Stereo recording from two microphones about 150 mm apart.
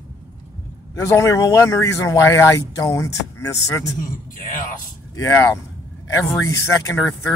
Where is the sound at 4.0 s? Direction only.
65° left (ahead or behind).